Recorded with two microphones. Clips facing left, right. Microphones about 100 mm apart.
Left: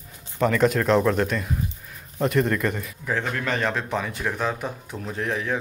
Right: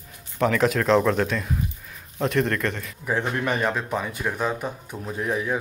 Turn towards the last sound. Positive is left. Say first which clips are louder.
# right 1 dB
turn(degrees=-10)  # may be behind; listen again after turning